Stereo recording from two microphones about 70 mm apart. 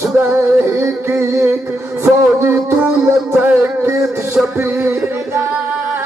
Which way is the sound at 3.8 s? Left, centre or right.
Right.